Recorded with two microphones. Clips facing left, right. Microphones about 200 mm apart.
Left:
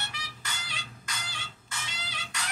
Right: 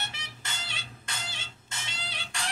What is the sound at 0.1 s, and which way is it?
Music, 25° right (ahead or behind).